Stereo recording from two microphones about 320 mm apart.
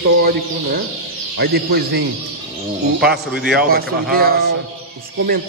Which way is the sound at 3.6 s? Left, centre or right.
Right.